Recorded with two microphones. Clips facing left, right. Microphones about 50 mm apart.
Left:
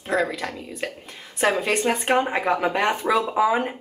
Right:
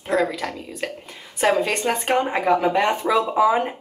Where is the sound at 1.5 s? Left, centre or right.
Centre.